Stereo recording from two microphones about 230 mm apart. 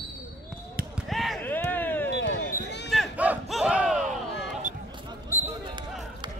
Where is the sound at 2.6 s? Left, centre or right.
Left.